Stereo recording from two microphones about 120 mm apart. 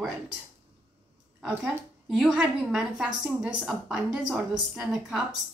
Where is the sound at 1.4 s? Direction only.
Centre (ahead or behind).